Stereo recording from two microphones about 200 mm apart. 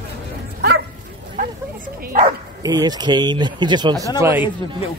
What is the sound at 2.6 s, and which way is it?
Speech, 20° right (ahead or behind).